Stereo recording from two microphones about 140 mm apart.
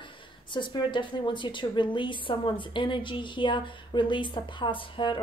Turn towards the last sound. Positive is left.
turn(degrees=35)  # may be behind; listen again after turning